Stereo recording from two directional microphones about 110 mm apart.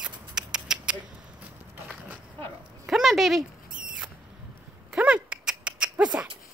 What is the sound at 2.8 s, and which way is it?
Speech, centre (ahead or behind).